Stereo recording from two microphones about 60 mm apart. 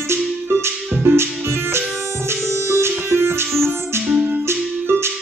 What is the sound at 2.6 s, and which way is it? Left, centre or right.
Music, right.